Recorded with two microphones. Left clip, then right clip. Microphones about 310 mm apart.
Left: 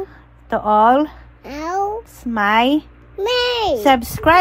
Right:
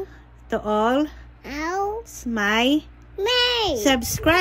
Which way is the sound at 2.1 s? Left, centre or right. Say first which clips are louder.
Left 7 dB; centre.